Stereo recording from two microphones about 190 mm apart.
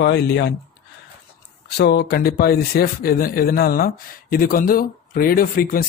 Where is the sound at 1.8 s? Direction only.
60° left (ahead or behind).